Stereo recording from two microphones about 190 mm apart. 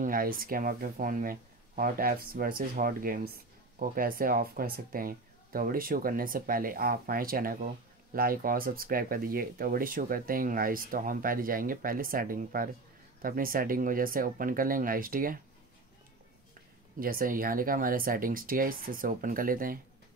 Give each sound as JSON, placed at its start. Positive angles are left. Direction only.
{"t": 0.0, "sound": "speech", "side_deg": -50}
{"t": 17.0, "sound": "speech", "side_deg": -50}